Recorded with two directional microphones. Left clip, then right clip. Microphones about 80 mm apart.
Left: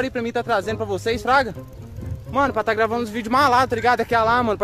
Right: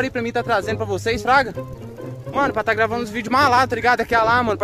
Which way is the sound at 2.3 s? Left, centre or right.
Left.